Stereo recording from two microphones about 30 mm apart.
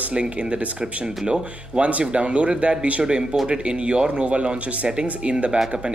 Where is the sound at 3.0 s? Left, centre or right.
Right.